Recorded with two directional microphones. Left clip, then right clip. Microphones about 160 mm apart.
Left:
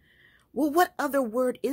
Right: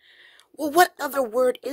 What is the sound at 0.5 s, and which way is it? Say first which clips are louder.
Speech: right 4 dB; 20° right (ahead or behind).